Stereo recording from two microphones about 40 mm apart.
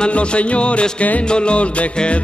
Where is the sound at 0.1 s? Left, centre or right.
Left.